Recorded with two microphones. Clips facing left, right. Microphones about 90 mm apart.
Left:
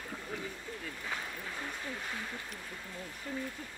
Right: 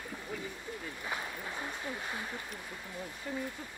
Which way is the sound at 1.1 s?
15° right (ahead or behind).